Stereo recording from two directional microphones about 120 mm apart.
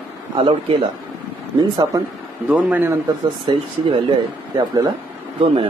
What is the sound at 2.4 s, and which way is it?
Speech, 10° right (ahead or behind).